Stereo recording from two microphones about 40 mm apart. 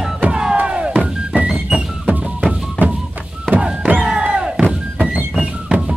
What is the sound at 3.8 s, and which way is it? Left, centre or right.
Music, right.